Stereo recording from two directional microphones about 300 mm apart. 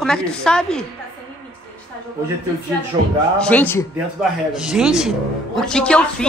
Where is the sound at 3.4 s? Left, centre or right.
Centre.